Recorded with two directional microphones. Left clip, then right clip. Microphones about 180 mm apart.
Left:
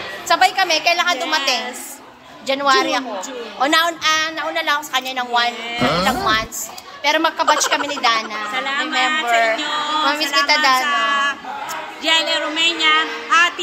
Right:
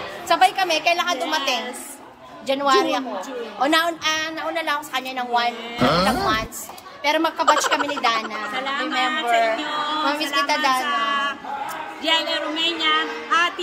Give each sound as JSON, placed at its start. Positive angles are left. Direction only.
{"t": 0.3, "sound": "a woman's voice", "side_deg": 5}
{"t": 8.5, "sound": "a woman's voice", "side_deg": -15}
{"t": 8.8, "sound": "a woman's voice", "side_deg": 0}
{"t": 9.2, "sound": "music", "side_deg": 15}
{"t": 9.6, "sound": "a sound", "side_deg": -15}
{"t": 10.0, "sound": "a woman's voice", "side_deg": 0}
{"t": 10.8, "sound": "a sound", "side_deg": -15}
{"t": 12.0, "sound": "a woman's voice", "side_deg": -15}